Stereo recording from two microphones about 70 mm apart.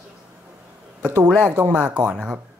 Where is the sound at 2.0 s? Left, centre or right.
Centre.